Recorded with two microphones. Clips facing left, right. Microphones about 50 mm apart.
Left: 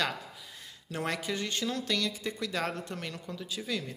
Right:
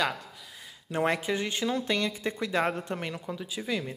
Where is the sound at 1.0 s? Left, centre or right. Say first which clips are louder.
Right 5 dB; right.